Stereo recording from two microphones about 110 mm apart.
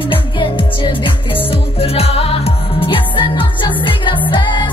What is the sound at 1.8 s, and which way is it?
Music, 65° left (ahead or behind).